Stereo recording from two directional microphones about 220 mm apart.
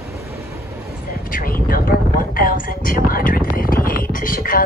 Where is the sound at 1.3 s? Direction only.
40° left (ahead or behind).